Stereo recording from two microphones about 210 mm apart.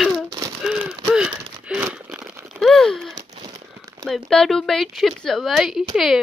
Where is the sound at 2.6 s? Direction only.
Centre (ahead or behind).